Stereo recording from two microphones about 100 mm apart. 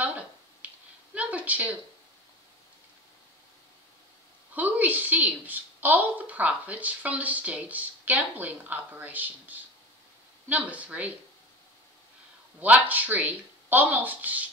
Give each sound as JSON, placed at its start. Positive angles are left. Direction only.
{"t": 0.0, "sound": "finger snapping", "side_deg": -15}
{"t": 1.1, "sound": "a sound", "side_deg": -15}
{"t": 4.6, "sound": "a woman's voice", "side_deg": -15}
{"t": 12.5, "sound": "a woman's voice", "side_deg": -15}